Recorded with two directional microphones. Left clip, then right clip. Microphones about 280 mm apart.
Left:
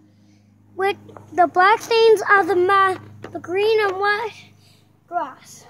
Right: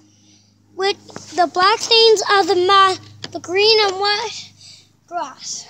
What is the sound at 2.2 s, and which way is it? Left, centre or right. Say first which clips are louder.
A child's voice: right 1 dB; centre.